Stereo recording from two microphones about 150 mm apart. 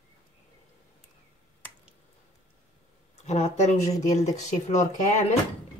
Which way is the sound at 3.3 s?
50° left (ahead or behind).